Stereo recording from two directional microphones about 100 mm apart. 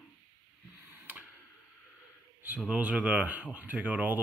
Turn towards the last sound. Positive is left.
turn(degrees=-15)  # may be behind; listen again after turning